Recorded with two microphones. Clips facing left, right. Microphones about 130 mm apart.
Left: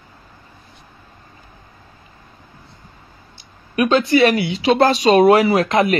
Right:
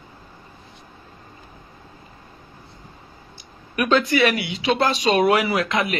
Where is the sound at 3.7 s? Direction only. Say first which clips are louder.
Left 4 dB; 25° left (ahead or behind).